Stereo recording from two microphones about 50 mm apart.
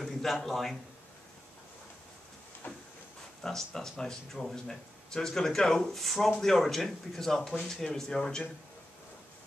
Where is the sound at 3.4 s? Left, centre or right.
Centre.